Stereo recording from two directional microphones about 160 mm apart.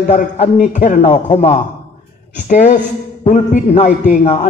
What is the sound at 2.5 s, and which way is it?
A man's voice, 50° left (ahead or behind).